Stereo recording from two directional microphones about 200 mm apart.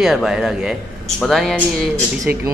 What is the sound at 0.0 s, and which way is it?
Speech, centre (ahead or behind).